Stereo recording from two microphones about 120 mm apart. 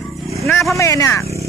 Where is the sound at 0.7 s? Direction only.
25° left (ahead or behind).